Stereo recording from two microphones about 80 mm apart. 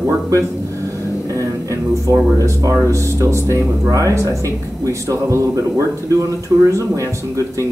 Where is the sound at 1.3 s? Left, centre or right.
Right.